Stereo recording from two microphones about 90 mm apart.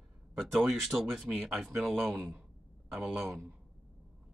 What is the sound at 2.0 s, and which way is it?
Speech, 15° right (ahead or behind).